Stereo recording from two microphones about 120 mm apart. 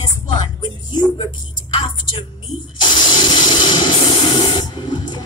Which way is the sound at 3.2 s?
40° left (ahead or behind).